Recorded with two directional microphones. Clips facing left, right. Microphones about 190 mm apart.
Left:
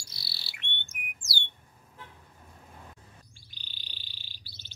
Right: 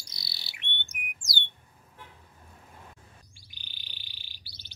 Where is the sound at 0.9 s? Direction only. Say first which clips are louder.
Right 1 dB; 20° right (ahead or behind).